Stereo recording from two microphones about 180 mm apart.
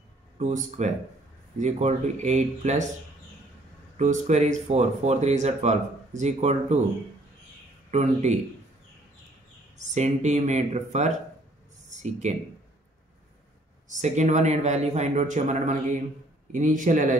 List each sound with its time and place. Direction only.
0.4 s a man's voice: 40° right (ahead or behind)
3.9 s speech: 40° right (ahead or behind)
7.9 s speech: 40° right (ahead or behind)
9.8 s speech: 40° right (ahead or behind)
13.9 s a man's voice: 40° right (ahead or behind)